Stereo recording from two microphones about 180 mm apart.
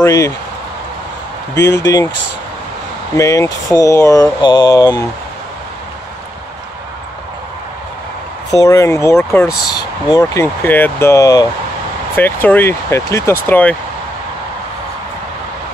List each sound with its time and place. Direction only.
0.0 s speech: 15° left (ahead or behind)
1.6 s speech: 75° left (ahead or behind)
3.2 s speech: 20° left (ahead or behind)
8.5 s speech: 15° left (ahead or behind)